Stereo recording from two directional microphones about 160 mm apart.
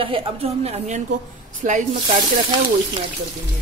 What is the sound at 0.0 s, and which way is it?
A woman's voice, 35° right (ahead or behind).